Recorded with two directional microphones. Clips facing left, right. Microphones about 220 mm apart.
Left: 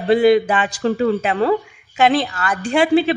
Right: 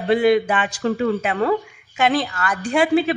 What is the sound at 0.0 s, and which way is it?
Speech, 35° left (ahead or behind).